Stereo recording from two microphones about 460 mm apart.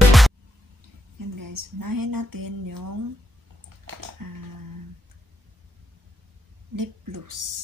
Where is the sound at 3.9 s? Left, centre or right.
Right.